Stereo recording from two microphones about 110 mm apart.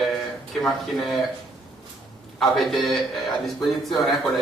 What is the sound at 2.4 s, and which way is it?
A man's voice, centre (ahead or behind).